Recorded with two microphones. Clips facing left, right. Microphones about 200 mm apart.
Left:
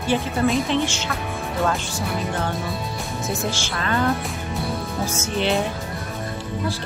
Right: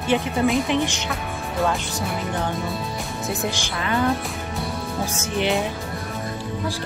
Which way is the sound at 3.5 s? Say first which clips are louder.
Even; 15° right (ahead or behind).